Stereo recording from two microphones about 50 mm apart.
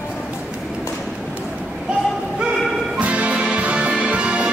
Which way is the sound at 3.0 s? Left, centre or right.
Right.